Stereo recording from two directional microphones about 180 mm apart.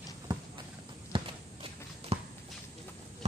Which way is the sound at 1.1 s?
30° right (ahead or behind).